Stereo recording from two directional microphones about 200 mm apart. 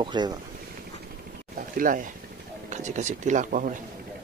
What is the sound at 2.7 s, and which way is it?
Speech, 35° right (ahead or behind).